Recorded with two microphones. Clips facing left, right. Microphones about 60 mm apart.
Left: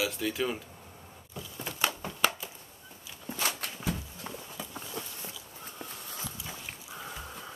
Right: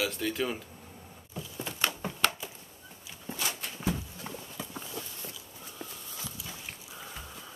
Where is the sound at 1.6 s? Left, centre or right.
Centre.